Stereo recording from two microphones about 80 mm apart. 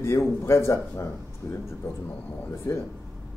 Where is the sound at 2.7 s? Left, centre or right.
Left.